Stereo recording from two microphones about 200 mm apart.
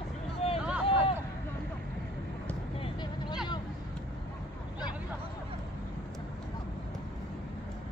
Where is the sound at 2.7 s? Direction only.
20° left (ahead or behind).